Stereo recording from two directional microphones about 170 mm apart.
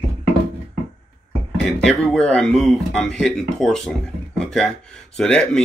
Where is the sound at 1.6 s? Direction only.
5° left (ahead or behind).